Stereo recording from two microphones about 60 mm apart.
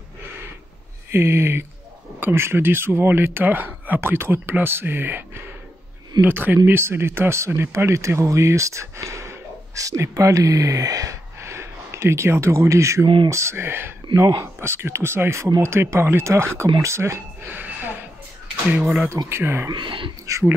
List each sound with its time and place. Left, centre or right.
1.1 s speech: right
11.3 s speech: right
17.5 s music: right
18.8 s speech: centre
19.2 s speech: right
20.3 s speech: right